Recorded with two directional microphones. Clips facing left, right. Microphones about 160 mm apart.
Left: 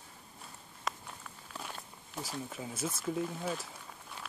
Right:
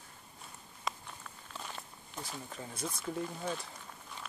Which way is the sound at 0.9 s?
5° left (ahead or behind).